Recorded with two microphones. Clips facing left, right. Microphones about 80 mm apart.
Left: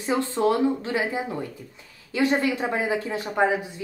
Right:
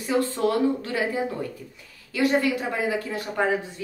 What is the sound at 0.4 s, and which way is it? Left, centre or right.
Speech, left.